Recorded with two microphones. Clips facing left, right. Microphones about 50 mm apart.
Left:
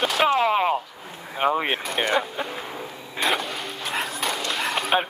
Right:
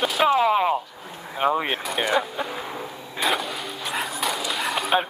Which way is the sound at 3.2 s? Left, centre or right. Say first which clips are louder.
Even; centre.